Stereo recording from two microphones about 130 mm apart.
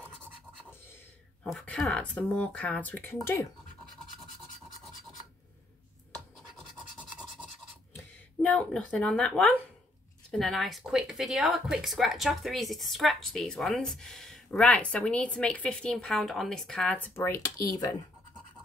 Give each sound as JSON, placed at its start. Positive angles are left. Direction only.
{"t": 1.4, "sound": "speech", "side_deg": 5}
{"t": 7.9, "sound": "speech", "side_deg": 10}
{"t": 17.1, "sound": "speech", "side_deg": 25}